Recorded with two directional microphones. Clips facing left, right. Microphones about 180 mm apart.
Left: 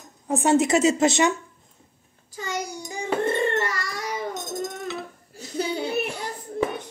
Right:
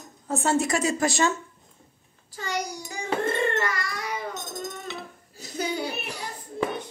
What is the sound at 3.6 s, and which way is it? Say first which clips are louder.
Baby cry: left 1 dB; 40° left (ahead or behind).